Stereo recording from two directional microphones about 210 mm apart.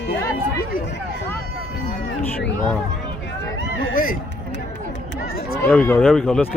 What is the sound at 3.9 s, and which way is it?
Speech, 40° left (ahead or behind).